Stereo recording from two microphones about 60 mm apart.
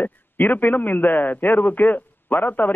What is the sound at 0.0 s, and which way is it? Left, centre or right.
A man's voice, left.